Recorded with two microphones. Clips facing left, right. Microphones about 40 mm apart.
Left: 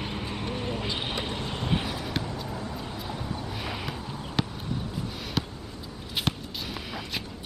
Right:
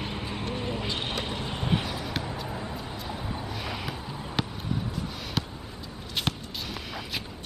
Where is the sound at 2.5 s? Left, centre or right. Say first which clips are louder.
Even; centre.